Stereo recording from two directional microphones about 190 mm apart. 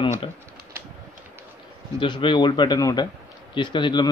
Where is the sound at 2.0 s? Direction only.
25° left (ahead or behind).